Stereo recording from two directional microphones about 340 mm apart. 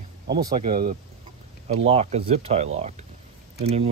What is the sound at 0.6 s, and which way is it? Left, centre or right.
Speech, right.